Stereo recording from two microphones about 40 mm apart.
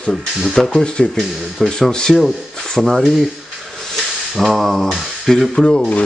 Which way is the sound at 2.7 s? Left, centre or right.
Centre.